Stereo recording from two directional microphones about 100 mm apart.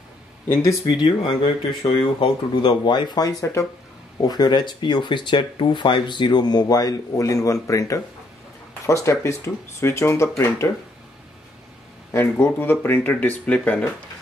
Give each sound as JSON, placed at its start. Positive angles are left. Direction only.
{"t": 0.5, "sound": "speech", "side_deg": 35}
{"t": 0.8, "sound": "speech", "side_deg": 50}
{"t": 12.1, "sound": "speech", "side_deg": 25}